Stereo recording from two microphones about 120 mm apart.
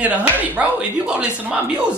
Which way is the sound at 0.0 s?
10° right (ahead or behind).